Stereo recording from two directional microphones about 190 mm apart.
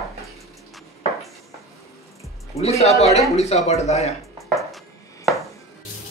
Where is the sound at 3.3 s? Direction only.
35° left (ahead or behind).